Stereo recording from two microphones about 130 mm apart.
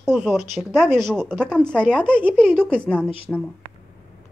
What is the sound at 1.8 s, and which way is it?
Speech, 15° right (ahead or behind).